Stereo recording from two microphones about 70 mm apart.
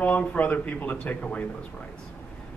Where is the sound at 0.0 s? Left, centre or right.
Left.